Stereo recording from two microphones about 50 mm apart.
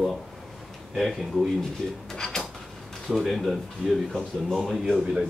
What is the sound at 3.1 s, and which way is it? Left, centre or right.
Speech, centre.